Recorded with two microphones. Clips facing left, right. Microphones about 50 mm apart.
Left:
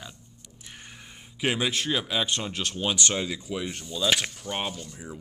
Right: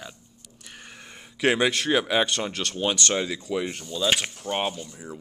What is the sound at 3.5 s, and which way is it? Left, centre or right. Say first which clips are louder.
Speech: right 4 dB; right.